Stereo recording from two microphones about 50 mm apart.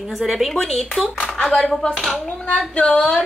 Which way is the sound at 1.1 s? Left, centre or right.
Left.